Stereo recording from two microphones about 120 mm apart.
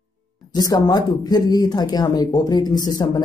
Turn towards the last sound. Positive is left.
turn(degrees=35)  # may be behind; listen again after turning